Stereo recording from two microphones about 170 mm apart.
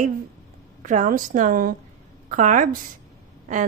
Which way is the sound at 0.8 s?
50° right (ahead or behind).